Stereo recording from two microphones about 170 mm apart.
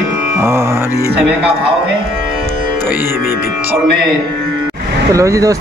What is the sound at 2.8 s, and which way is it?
Music, 10° right (ahead or behind).